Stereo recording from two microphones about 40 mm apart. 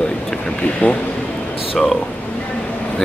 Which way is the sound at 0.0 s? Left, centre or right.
Centre.